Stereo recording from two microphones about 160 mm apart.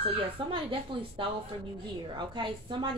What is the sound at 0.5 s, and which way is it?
A woman's voice, 30° right (ahead or behind).